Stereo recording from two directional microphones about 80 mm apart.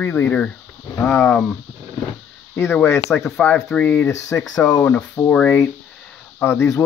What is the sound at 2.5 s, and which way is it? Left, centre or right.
Speech, left.